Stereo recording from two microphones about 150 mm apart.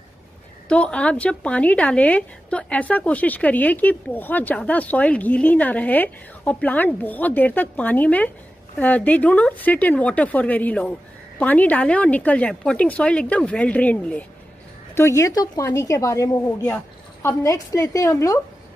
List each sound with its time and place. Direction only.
0.7 s a woman's voice: 5° left (ahead or behind)
15.0 s a woman's voice: 20° left (ahead or behind)